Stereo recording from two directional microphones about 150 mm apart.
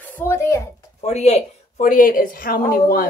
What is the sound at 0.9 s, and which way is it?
Speech, 45° left (ahead or behind).